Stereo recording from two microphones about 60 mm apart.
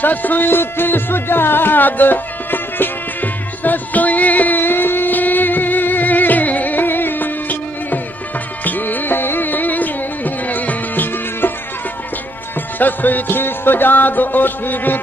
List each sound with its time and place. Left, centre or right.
0.0 s music: left
12.7 s music: left